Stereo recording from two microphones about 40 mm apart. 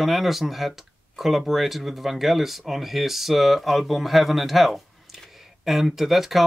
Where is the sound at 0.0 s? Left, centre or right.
Centre.